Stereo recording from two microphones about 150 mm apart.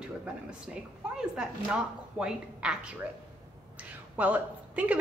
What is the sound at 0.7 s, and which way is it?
A woman's voice, 5° right (ahead or behind).